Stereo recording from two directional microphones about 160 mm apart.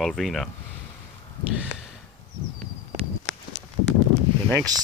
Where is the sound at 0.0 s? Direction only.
Centre (ahead or behind).